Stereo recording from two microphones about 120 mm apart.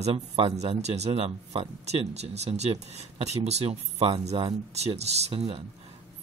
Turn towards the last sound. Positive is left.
turn(degrees=-60)  # may be behind; listen again after turning